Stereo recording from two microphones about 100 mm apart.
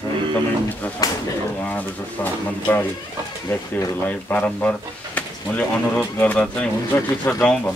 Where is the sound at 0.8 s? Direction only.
15° left (ahead or behind).